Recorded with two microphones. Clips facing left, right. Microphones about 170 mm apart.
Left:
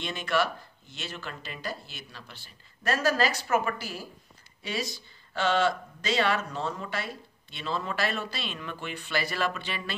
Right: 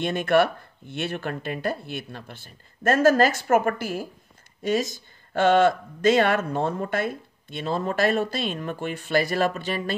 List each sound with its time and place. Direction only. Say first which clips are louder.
0.0 s speech: right 8 dB; 55° right (ahead or behind)